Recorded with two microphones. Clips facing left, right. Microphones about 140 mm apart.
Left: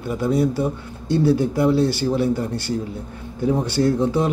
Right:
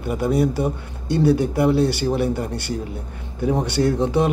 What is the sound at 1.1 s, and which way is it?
A man's voice, 60° right (ahead or behind).